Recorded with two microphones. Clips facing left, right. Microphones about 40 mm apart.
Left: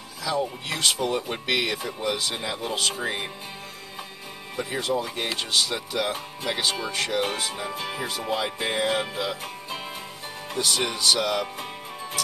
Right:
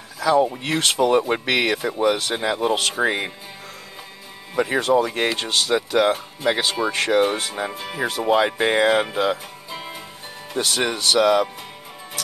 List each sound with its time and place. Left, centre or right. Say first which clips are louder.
0.2 s speech: right 9 dB; right
2.1 s speech: right 6 dB; right
4.6 s speech: right 9 dB; right
9.7 s music: right 3 dB; centre
10.6 s speech: right 3 dB; right